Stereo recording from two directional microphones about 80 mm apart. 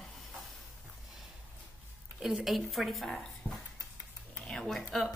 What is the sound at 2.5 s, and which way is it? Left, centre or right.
Speech, centre.